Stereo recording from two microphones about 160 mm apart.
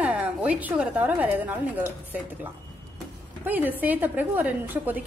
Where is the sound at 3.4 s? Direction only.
10° right (ahead or behind).